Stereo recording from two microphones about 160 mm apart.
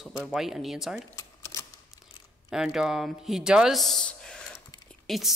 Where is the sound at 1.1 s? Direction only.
20° left (ahead or behind).